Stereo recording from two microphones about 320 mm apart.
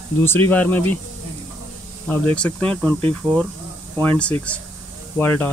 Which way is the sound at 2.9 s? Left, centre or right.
Centre.